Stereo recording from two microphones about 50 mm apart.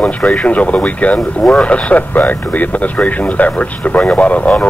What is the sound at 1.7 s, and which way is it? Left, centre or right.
Speech, left.